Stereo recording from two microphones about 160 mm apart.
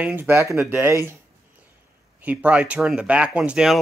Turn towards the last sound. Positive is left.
turn(degrees=-5)  # may be behind; listen again after turning